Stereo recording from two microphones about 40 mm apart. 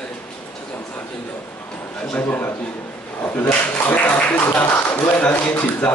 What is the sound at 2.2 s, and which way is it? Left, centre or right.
Speech, left.